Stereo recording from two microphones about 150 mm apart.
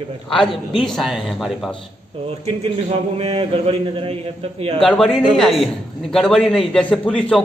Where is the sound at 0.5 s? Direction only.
Centre (ahead or behind).